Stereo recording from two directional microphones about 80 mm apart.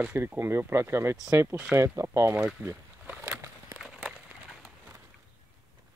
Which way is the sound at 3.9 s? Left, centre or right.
Centre.